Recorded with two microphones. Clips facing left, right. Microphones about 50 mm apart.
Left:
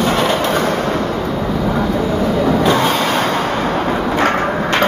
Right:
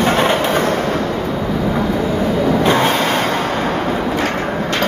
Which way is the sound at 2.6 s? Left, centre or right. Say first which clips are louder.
Right 1 dB; right.